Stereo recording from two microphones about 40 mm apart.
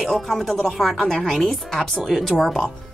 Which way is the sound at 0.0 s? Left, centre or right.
Centre.